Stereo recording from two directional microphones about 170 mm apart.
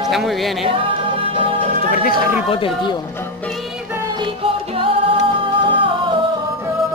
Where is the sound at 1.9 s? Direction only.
60° left (ahead or behind).